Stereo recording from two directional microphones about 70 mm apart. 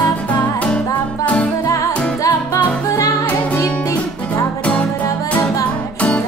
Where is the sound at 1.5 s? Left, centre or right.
Left.